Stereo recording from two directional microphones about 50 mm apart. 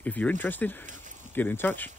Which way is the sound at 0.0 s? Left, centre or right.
Left.